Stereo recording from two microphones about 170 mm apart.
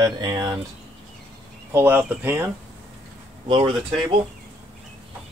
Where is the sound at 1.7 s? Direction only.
15° right (ahead or behind).